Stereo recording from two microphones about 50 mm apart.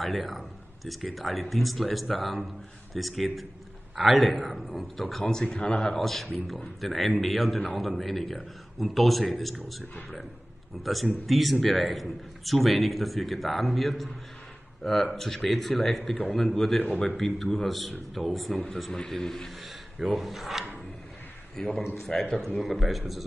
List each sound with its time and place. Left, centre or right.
0.0 s speech: centre
5.2 s speech: centre
16.8 s speech: left
17.2 s speech: centre
20.1 s speech: centre
21.6 s speech: centre
22.1 s speech: left
22.6 s speech: centre